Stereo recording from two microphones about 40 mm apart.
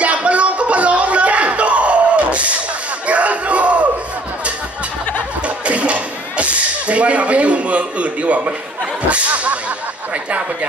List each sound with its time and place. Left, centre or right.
0.0 s music: right
3.1 s crowd: right
5.7 s a sound: right
9.1 s speech: right